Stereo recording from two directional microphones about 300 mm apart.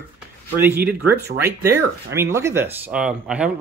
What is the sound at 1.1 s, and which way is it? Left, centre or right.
Speech, right.